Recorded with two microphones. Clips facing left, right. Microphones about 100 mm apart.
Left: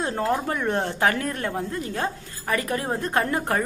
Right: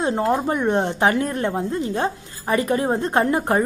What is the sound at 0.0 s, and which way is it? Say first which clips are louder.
Speech: right 4 dB; 20° right (ahead or behind).